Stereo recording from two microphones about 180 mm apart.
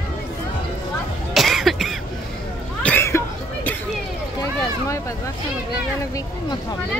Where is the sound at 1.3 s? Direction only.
Centre (ahead or behind).